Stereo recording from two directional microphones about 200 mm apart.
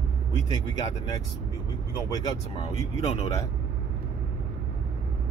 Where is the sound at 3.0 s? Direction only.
30° left (ahead or behind).